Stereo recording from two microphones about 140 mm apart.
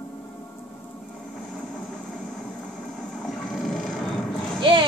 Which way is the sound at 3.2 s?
Centre (ahead or behind).